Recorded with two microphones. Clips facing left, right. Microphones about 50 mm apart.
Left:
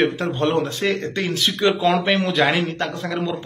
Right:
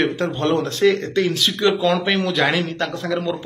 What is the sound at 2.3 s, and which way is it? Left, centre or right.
Speech, centre.